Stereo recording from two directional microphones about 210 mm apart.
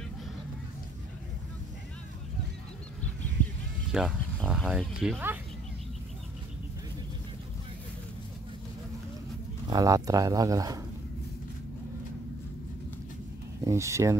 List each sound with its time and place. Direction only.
3.9 s speech: 5° right (ahead or behind)
9.7 s speech: 15° right (ahead or behind)
13.7 s speech: 15° right (ahead or behind)